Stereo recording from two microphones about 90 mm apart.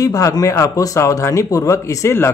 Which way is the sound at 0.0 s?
40° left (ahead or behind).